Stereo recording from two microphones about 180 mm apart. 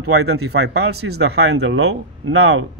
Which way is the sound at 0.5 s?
90° right.